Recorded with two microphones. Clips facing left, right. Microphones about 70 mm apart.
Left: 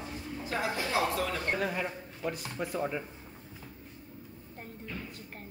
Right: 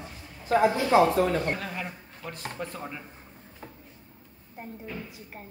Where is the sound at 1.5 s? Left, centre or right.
Centre.